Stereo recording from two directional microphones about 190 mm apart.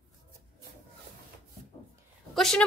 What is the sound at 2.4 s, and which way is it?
Speech, centre (ahead or behind).